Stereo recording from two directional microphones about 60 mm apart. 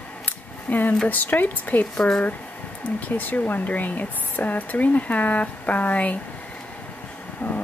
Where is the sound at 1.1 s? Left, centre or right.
Left.